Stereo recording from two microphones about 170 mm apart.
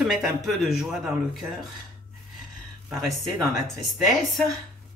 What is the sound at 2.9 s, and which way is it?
Speech, centre (ahead or behind).